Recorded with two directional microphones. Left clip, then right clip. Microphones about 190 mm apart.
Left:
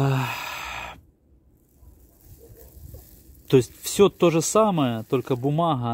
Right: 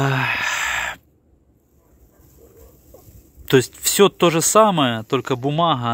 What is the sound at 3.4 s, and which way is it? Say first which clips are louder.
Speech: right 4 dB; centre (ahead or behind).